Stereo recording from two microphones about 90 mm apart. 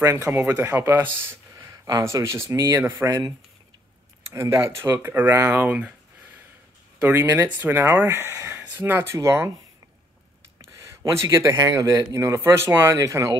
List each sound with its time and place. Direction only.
0.0 s speech: 30° right (ahead or behind)
10.6 s a sound: 35° right (ahead or behind)
11.1 s speech: 35° right (ahead or behind)